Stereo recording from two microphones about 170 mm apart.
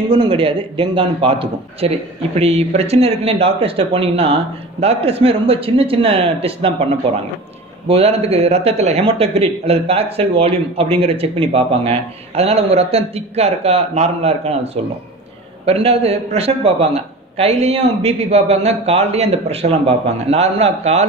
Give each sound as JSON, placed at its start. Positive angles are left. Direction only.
{"t": 0.1, "sound": "a man's voice", "side_deg": -30}
{"t": 7.9, "sound": "a man's voice", "side_deg": -35}